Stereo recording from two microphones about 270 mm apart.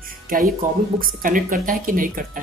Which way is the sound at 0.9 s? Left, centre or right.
Right.